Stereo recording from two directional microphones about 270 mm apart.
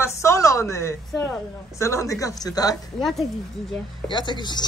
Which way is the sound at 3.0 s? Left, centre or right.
Centre.